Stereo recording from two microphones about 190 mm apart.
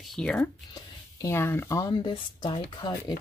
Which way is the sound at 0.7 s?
20° left (ahead or behind).